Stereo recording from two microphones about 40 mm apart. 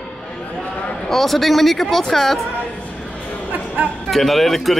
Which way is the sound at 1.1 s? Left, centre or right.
Centre.